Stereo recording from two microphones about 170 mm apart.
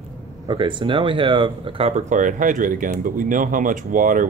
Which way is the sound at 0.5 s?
25° right (ahead or behind).